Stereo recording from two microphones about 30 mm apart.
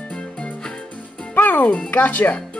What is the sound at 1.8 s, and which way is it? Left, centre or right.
Speech, left.